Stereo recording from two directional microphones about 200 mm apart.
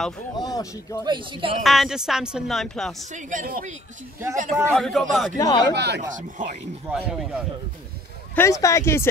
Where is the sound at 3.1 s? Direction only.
40° right (ahead or behind).